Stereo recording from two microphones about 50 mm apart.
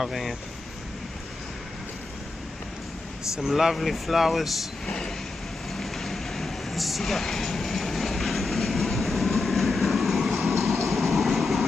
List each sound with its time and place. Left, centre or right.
0.0 s speech: centre
3.4 s speech: centre
4.8 s vehicle: centre
10.9 s train: centre